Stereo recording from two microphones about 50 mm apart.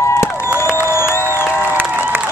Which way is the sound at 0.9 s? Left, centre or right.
Left.